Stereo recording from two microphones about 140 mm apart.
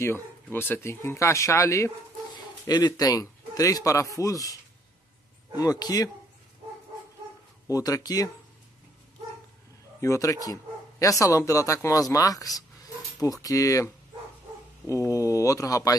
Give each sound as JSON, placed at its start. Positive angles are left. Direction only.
{"t": 0.0, "sound": "speech", "side_deg": 15}
{"t": 5.6, "sound": "speech", "side_deg": 25}
{"t": 7.7, "sound": "speech", "side_deg": 25}
{"t": 9.9, "sound": "speech", "side_deg": 20}
{"t": 14.9, "sound": "speech", "side_deg": 25}